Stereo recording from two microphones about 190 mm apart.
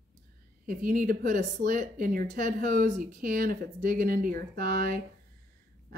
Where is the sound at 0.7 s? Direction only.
45° right (ahead or behind).